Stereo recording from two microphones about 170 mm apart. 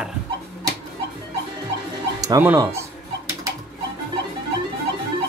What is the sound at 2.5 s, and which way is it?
Speech, 25° right (ahead or behind).